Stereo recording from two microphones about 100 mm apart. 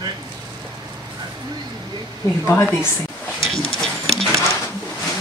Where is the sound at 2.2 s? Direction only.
25° left (ahead or behind).